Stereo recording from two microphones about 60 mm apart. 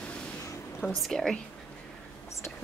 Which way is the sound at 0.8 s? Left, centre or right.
Centre.